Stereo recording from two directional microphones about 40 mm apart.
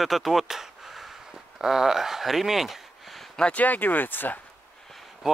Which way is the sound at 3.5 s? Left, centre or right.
Left.